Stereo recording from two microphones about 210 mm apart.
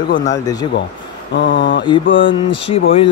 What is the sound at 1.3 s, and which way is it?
Mantra, 55° left (ahead or behind).